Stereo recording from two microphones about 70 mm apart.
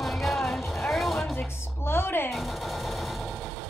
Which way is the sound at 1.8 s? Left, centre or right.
Left.